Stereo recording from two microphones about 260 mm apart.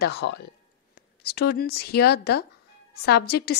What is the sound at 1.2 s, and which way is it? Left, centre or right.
Speech, left.